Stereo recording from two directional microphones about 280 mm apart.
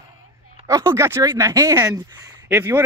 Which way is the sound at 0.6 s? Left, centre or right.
Centre.